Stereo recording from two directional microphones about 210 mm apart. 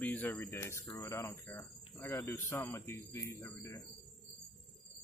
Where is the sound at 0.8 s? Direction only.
15° left (ahead or behind).